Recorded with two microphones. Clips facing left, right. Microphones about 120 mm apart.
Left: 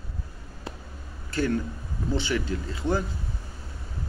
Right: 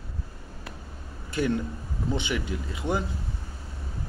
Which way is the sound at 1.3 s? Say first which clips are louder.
Even; 15° right (ahead or behind).